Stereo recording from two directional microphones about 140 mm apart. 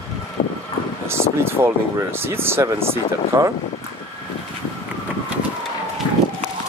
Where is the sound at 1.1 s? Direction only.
15° right (ahead or behind).